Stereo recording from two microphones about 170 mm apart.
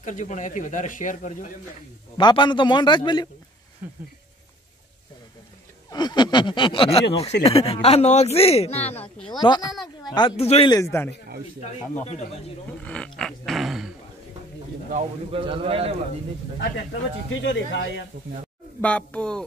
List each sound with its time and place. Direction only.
0.0 s speech: 45° left (ahead or behind)
2.1 s snicker: 25° left (ahead or behind)
5.9 s snicker: 25° left (ahead or behind)
7.4 s speech: 35° left (ahead or behind)
9.4 s snicker: 25° left (ahead or behind)
10.1 s speech: 30° left (ahead or behind)
10.7 s speech: 15° left (ahead or behind)
12.8 s dog: 5° left (ahead or behind)
15.3 s a man's voice: 30° right (ahead or behind)
16.5 s speech: 90° left
18.8 s speech: 5° left (ahead or behind)